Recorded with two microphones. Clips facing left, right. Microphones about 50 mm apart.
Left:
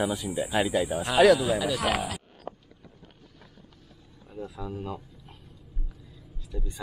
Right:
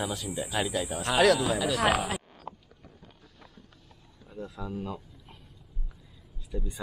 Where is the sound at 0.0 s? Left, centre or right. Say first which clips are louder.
Left 5 dB; centre.